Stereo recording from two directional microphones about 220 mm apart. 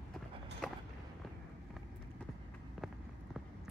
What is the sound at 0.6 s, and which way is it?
Walk, centre (ahead or behind).